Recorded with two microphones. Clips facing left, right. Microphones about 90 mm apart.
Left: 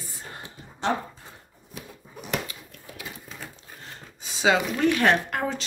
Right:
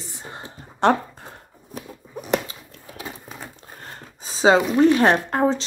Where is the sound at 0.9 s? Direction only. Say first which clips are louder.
Right 6 dB; 55° right (ahead or behind).